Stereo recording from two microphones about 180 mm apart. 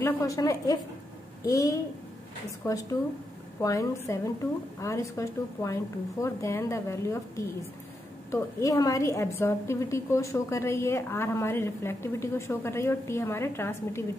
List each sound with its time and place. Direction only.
0.0 s a woman's voice: 20° left (ahead or behind)